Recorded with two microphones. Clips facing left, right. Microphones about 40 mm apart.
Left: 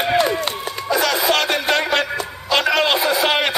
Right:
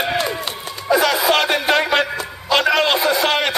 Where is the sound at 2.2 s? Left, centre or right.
Centre.